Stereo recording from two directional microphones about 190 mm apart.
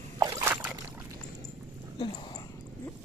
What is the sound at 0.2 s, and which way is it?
Boat, 15° right (ahead or behind).